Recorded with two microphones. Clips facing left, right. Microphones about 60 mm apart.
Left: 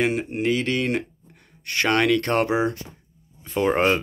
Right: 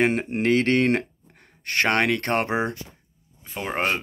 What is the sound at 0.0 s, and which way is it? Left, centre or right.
Speech, right.